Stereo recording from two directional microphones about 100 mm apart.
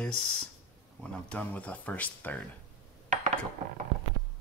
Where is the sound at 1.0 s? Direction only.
15° left (ahead or behind).